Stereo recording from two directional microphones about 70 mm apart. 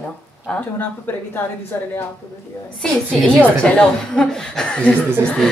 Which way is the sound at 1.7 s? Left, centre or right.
Left.